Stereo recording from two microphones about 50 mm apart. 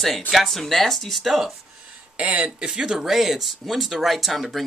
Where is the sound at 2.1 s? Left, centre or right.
Right.